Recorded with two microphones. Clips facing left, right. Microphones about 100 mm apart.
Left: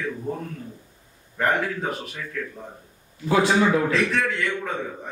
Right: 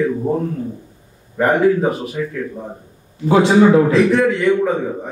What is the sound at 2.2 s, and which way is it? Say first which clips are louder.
Speech: right 13 dB; 10° right (ahead or behind).